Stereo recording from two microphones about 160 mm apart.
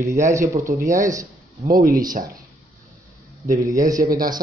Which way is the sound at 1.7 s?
65° right (ahead or behind).